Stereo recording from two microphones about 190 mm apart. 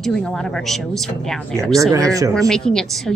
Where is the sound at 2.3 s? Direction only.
5° left (ahead or behind).